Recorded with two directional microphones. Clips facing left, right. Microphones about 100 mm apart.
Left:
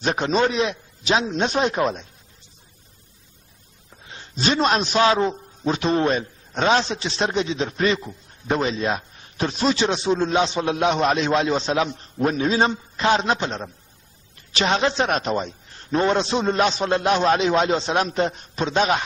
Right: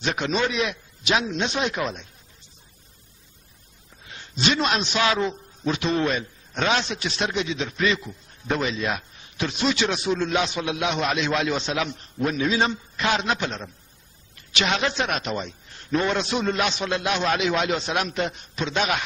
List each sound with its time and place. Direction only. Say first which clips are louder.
0.0 s a man's voice: left 4 dB; 35° left (ahead or behind)
4.4 s a man's voice: left 3 dB; 40° left (ahead or behind)